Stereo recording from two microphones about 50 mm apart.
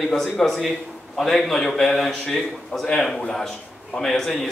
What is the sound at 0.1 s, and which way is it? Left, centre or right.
A man's voice, centre.